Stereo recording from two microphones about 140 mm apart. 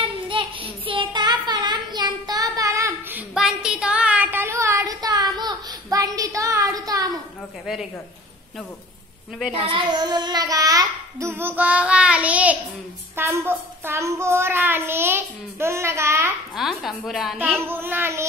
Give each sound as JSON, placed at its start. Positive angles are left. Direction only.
{"t": 0.0, "sound": "child singing", "side_deg": -40}
{"t": 3.2, "sound": "a sound", "side_deg": -5}
{"t": 7.6, "sound": "a woman's voice", "side_deg": 0}
{"t": 9.7, "sound": "child singing", "side_deg": -35}
{"t": 13.1, "sound": "a child's voice", "side_deg": -20}
{"t": 16.5, "sound": "a woman's voice", "side_deg": 0}
{"t": 17.6, "sound": "a child's voice", "side_deg": -15}